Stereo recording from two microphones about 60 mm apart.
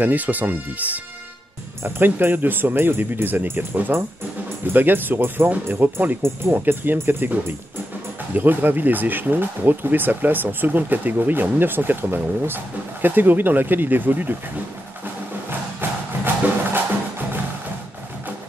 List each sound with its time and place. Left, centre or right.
0.0 s speech: right